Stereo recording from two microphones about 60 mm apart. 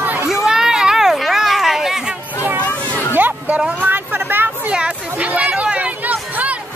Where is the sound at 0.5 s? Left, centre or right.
Centre.